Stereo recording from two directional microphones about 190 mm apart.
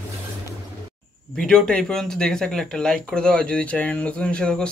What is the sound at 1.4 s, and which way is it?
Speech, 5° left (ahead or behind).